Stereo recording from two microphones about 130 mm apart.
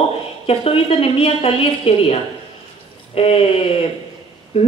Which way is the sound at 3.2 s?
50° left (ahead or behind).